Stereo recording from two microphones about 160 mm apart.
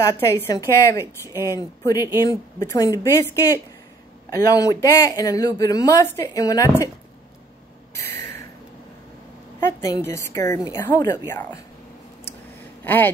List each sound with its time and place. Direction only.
0.0 s speech: 20° left (ahead or behind)
7.9 s a sound: 15° left (ahead or behind)
9.6 s a woman's voice: 15° left (ahead or behind)
12.8 s speech: 10° left (ahead or behind)